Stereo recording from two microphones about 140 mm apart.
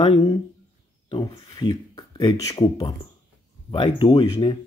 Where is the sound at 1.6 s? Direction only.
30° left (ahead or behind).